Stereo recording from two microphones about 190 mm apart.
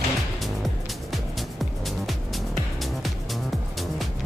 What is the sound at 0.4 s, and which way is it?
Music, centre (ahead or behind).